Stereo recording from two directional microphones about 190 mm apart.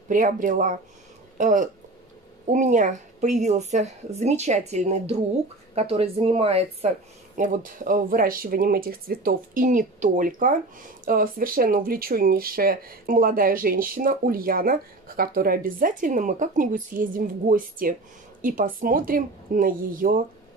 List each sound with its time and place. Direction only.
0.1 s speech: 45° right (ahead or behind)
7.3 s speech: 45° right (ahead or behind)